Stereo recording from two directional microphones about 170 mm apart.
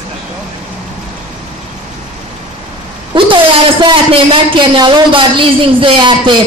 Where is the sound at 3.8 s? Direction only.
30° right (ahead or behind).